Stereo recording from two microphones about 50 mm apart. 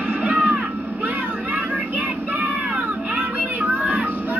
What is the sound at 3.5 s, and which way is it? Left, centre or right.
Music, right.